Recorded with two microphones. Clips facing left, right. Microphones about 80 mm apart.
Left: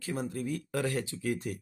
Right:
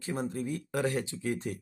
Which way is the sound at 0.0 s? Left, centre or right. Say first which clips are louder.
Right 1 dB; right.